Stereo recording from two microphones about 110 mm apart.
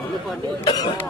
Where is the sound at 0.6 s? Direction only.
40° left (ahead or behind).